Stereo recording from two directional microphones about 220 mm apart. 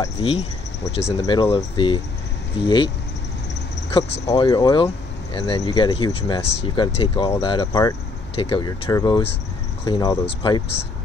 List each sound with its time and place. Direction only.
0.2 s speech: 25° left (ahead or behind)
4.3 s speech: 20° left (ahead or behind)